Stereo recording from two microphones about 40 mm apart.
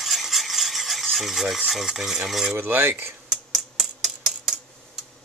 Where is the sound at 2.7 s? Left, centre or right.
Right.